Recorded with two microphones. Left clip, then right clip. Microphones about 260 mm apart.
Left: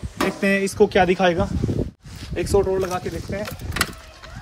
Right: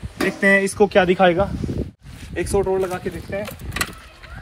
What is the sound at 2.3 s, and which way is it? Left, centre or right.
Speech, centre.